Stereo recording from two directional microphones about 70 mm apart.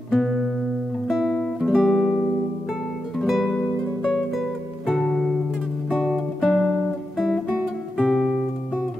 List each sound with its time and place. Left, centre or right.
1.0 s guitar: centre
1.4 s music: centre
3.2 s music: centre
4.8 s music: centre
6.4 s music: centre
7.2 s guitar: centre